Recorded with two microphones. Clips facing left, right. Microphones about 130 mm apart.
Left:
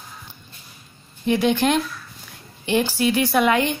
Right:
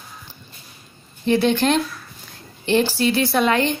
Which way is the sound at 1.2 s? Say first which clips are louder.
Right 1 dB; 10° left (ahead or behind).